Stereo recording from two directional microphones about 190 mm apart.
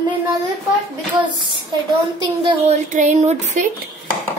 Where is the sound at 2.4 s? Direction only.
30° right (ahead or behind).